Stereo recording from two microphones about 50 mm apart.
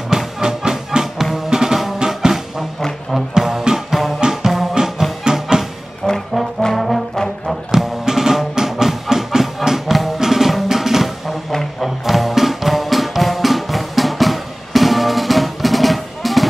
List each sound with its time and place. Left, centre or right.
0.1 s music: centre
6.0 s music: centre
6.6 s brass instrument: centre
7.7 s music: centre